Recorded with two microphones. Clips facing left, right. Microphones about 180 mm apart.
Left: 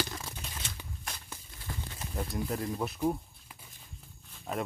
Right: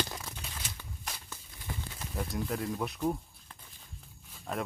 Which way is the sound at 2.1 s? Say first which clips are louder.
Even; centre (ahead or behind).